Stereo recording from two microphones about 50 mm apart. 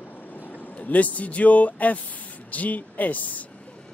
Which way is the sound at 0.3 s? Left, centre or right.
Left.